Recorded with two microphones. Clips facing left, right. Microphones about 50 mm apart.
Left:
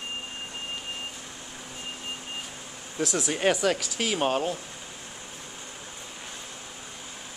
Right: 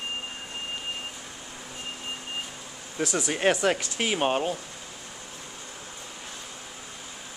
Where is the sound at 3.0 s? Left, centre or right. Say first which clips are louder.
Even; centre.